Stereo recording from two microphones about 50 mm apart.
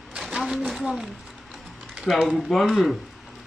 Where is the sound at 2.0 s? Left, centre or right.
Centre.